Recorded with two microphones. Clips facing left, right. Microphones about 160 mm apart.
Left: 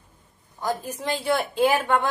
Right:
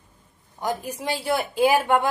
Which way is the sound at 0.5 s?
15° right (ahead or behind).